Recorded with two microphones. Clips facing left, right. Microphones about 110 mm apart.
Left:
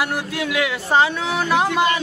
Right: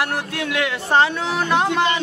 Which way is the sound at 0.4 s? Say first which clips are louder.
Left 1 dB; 5° left (ahead or behind).